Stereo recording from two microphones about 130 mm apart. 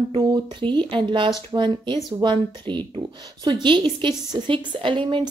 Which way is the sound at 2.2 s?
35° right (ahead or behind).